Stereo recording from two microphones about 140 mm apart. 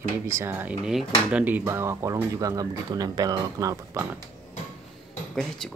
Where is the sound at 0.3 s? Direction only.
15° right (ahead or behind).